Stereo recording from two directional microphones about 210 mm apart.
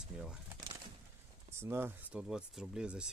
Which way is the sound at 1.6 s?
10° right (ahead or behind).